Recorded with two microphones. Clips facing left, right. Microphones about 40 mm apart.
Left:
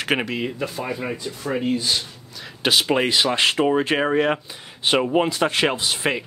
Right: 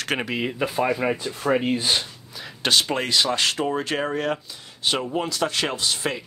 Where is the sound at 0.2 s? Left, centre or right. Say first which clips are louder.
Left 1 dB; centre.